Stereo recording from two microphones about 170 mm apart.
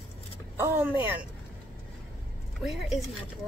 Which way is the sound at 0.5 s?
15° right (ahead or behind).